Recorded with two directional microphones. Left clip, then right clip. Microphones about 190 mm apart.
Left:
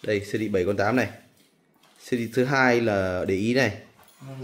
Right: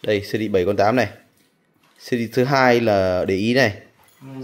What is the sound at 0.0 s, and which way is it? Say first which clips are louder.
Speech: right 5 dB; 15° right (ahead or behind).